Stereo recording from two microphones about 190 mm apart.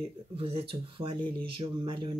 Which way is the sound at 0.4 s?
30° right (ahead or behind).